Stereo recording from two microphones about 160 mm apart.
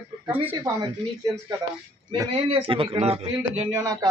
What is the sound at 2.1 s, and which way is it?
A man's voice, 30° right (ahead or behind).